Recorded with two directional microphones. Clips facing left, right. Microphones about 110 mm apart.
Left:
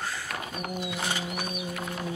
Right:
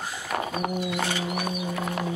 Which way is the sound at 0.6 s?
90° right.